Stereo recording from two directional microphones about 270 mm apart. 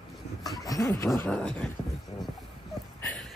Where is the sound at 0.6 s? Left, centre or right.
Centre.